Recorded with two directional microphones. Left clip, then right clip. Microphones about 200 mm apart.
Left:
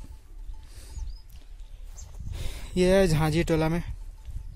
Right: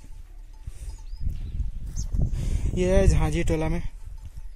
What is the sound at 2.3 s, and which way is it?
Speech, 10° left (ahead or behind).